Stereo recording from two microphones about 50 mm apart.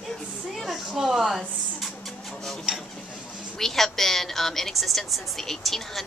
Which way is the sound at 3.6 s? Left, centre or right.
Centre.